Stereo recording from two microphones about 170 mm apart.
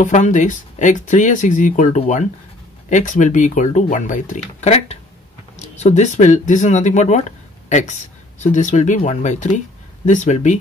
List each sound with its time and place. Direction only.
0.0 s speech: 45° left (ahead or behind)